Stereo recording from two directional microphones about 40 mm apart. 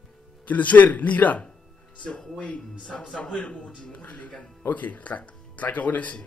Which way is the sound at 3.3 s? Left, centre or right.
Left.